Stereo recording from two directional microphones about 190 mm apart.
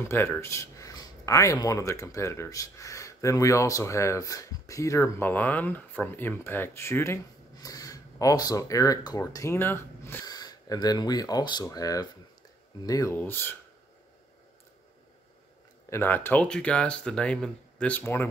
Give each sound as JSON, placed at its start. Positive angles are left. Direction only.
{"t": 0.0, "sound": "speech", "side_deg": 15}
{"t": 15.9, "sound": "speech", "side_deg": 10}